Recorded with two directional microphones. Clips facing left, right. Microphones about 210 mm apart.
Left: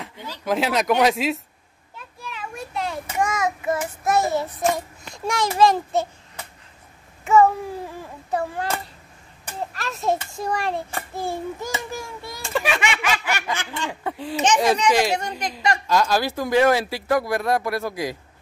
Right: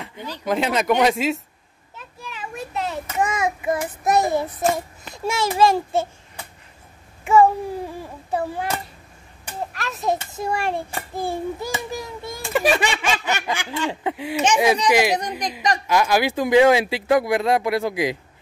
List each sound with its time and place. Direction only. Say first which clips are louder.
0.5 s speech: right 1 dB; centre (ahead or behind)
2.0 s a sound: even; 5° right (ahead or behind)
3.2 s speech: right 1 dB; 10° right (ahead or behind)
4.4 s speech: right 1 dB; 5° right (ahead or behind)
7.2 s babbling: right 1 dB; 10° right (ahead or behind)
8.0 s a sound: left 3 dB; 10° right (ahead or behind)
9.8 s speech: even; centre (ahead or behind); by 12.3 s 20° right (ahead or behind)
12.6 s a sound: right 5 dB; 35° right (ahead or behind); by 13.8 s 10° right (ahead or behind)
13.8 s speech: right 4 dB; 15° right (ahead or behind)